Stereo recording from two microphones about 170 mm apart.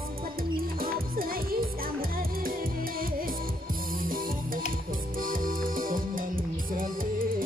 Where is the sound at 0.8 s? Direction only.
60° right (ahead or behind).